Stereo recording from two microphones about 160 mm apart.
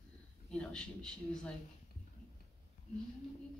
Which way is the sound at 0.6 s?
5° left (ahead or behind).